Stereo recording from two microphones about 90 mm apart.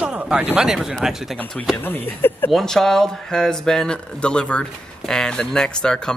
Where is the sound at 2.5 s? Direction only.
5° left (ahead or behind).